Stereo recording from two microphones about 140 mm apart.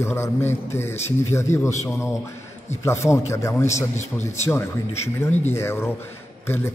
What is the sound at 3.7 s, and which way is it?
Speech, 55° left (ahead or behind).